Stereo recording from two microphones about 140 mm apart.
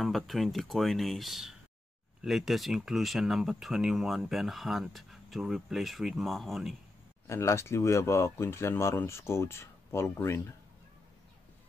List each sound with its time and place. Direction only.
0.0 s speech: centre (ahead or behind)
7.2 s speech: 20° left (ahead or behind)